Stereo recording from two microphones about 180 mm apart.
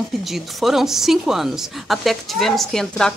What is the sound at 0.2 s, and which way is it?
Speech, centre (ahead or behind).